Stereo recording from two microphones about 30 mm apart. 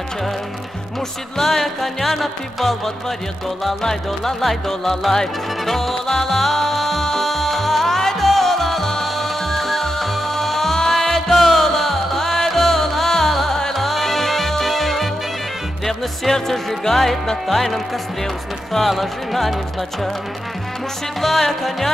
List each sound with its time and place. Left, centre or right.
1.4 s music: centre
18.9 s speech: centre
21.2 s music: centre